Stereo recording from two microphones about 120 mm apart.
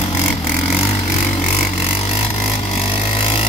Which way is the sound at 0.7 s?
60° left (ahead or behind).